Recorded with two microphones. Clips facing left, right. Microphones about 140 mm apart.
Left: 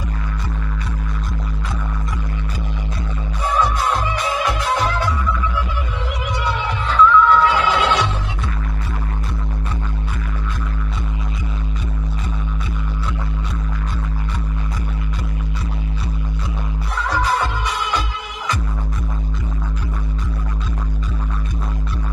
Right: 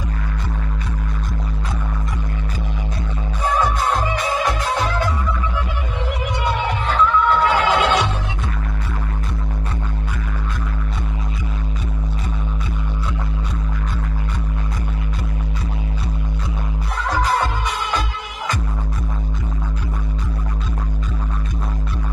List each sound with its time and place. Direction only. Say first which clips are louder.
6.4 s music: right 2 dB; 50° right (ahead or behind)